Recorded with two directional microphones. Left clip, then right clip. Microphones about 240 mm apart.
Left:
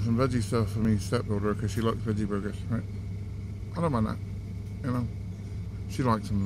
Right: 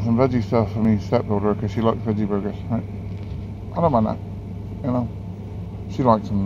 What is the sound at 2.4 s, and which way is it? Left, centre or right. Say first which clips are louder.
Speech: right 8 dB; right.